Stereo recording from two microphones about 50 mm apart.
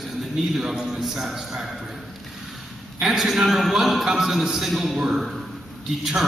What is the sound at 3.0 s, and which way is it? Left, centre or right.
A man's voice, centre.